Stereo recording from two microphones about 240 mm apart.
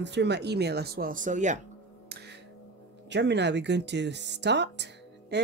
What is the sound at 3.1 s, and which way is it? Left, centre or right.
Speech, right.